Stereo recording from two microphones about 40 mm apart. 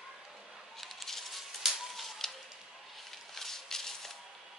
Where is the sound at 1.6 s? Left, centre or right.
Centre.